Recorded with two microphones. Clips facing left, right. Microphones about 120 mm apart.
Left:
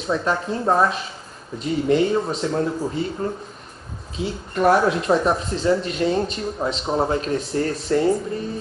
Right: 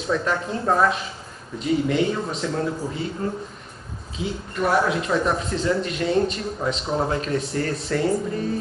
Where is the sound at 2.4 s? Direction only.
30° left (ahead or behind).